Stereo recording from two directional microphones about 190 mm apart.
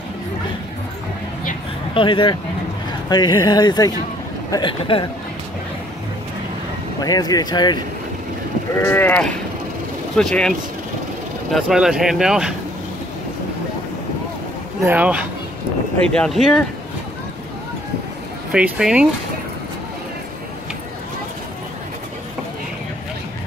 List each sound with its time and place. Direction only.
2.0 s speech: 25° left (ahead or behind)
7.0 s speech: 20° left (ahead or behind)
8.7 s sheep: 10° left (ahead or behind)
10.1 s speech: 5° left (ahead or behind)
11.5 s speech: 5° right (ahead or behind)
14.9 s speech: 5° right (ahead or behind)
16.1 s speech: 5° left (ahead or behind)
18.5 s speech: 5° right (ahead or behind)